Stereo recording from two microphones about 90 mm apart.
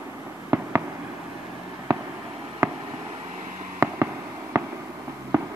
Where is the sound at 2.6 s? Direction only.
30° right (ahead or behind).